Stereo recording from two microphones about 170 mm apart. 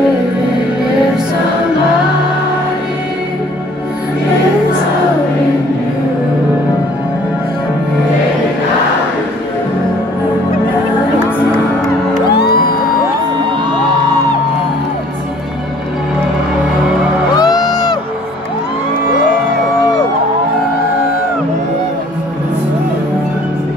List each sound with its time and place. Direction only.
17.4 s music: 25° left (ahead or behind)